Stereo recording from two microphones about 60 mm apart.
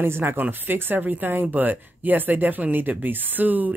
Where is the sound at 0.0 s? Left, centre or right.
Right.